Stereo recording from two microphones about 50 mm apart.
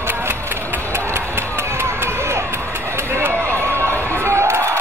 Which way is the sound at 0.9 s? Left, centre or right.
Right.